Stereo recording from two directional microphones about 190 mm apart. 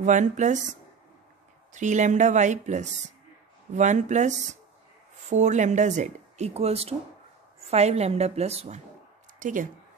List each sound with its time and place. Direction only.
0.0 s speech: 40° right (ahead or behind)
1.7 s speech: 40° right (ahead or behind)